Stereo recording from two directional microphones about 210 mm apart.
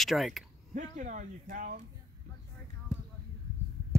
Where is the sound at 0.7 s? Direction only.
40° right (ahead or behind).